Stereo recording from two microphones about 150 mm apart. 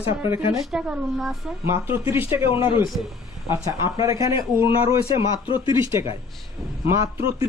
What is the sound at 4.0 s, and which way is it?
Speech, 20° right (ahead or behind).